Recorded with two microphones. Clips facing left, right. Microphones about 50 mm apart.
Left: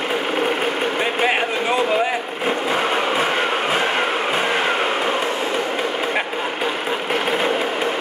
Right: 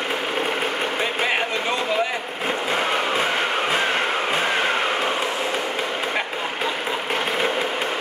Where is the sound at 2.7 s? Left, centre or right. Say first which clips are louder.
Left 1 dB; centre.